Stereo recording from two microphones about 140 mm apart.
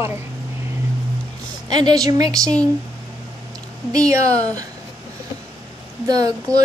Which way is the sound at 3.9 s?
25° right (ahead or behind).